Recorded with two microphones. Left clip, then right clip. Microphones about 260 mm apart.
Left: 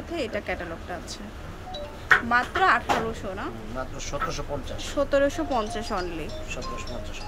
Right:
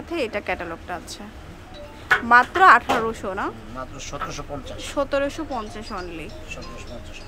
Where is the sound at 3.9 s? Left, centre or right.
Centre.